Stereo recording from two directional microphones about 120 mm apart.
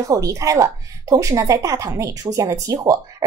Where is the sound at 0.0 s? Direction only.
25° right (ahead or behind).